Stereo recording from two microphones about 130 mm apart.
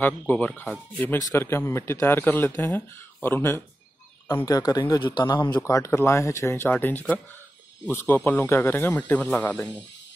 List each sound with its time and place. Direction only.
0.0 s speech: 15° left (ahead or behind)
4.5 s speech: 30° left (ahead or behind)
5.6 s speech: 25° left (ahead or behind)